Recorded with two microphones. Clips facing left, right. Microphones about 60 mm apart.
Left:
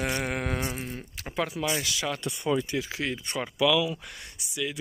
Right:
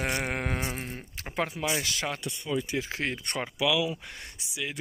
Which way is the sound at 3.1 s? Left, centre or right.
Right.